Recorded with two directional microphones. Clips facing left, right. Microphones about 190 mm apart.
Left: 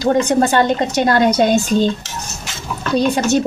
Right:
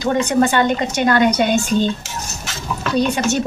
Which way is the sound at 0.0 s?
35° left (ahead or behind).